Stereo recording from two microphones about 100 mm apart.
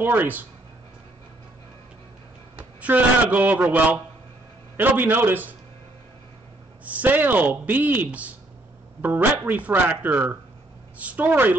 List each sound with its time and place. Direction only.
0.0 s speech: 20° right (ahead or behind)
2.5 s a man's voice: 15° right (ahead or behind)
6.8 s speech: 15° right (ahead or behind)